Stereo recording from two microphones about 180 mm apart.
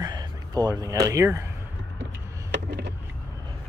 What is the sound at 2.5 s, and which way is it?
Vehicle, 70° right (ahead or behind).